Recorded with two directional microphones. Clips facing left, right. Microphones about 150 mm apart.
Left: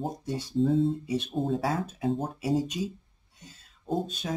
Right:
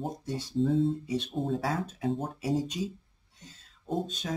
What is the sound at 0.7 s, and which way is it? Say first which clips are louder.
Speech: left 2 dB; 10° left (ahead or behind).